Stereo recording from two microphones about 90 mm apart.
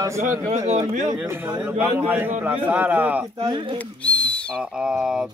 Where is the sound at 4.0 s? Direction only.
15° left (ahead or behind).